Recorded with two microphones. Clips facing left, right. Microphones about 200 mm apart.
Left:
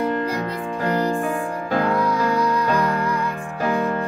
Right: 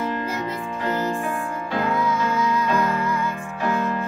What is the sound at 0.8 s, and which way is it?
Music, 35° left (ahead or behind).